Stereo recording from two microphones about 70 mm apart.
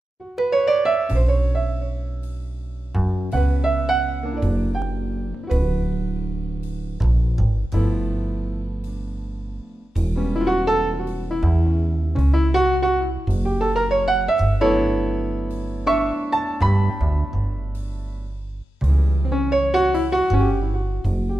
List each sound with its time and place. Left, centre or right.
0.4 s music: centre
2.9 s music: centre
7.0 s music: centre
9.9 s music: centre
13.3 s music: centre
13.6 s music: centre
15.8 s music: centre
18.9 s music: centre